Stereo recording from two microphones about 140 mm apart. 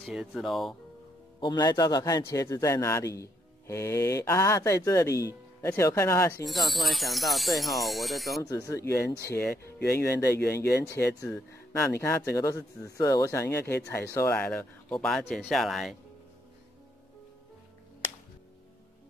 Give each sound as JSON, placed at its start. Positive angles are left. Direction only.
{"t": 0.0, "sound": "speech", "side_deg": 0}
{"t": 1.4, "sound": "a man's voice", "side_deg": 30}
{"t": 6.4, "sound": "speech", "side_deg": 0}
{"t": 8.4, "sound": "a man's voice", "side_deg": 25}